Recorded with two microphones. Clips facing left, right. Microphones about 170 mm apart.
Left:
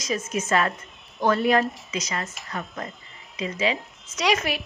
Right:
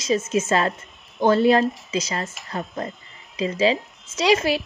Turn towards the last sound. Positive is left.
turn(degrees=-30)  # may be behind; listen again after turning